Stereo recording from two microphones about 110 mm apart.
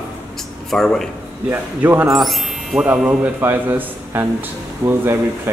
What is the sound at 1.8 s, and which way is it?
Speech, 15° right (ahead or behind).